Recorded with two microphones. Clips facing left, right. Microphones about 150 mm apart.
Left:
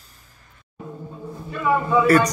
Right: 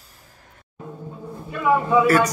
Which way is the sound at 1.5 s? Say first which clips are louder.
Right 1 dB; 10° right (ahead or behind).